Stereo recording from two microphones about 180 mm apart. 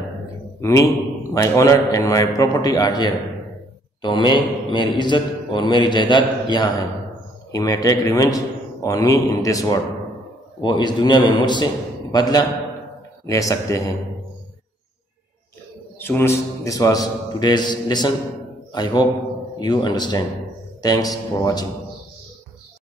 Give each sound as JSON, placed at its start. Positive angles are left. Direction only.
{"t": 0.6, "sound": "a man's voice", "side_deg": 15}
{"t": 16.0, "sound": "a man's voice", "side_deg": 10}